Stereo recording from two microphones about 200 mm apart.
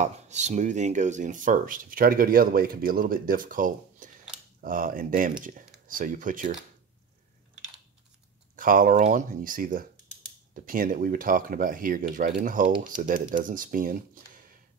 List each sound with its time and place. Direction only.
0.0 s speech: 35° right (ahead or behind)
8.5 s speech: 45° right (ahead or behind)